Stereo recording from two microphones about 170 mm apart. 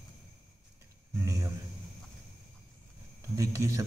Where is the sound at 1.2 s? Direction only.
20° right (ahead or behind).